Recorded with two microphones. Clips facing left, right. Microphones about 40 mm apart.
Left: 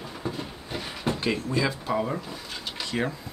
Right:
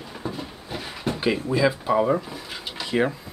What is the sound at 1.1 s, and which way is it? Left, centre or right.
Speech, centre.